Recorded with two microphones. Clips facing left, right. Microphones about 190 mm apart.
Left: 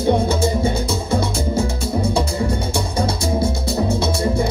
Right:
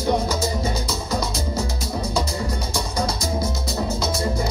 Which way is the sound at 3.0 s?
30° left (ahead or behind).